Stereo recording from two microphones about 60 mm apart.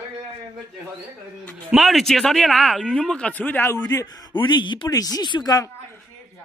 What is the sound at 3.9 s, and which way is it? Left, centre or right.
Speech, left.